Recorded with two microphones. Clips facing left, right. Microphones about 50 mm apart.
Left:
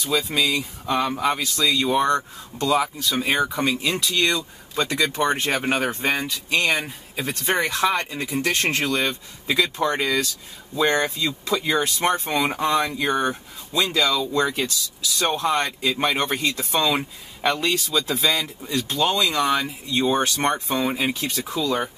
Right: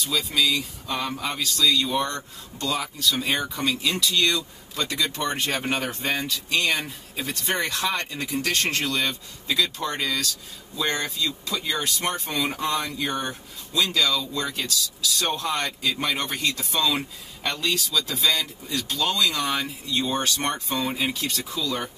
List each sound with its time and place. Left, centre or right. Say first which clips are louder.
0.0 s speech: left 2 dB; left
14.4 s speech: left 5 dB; centre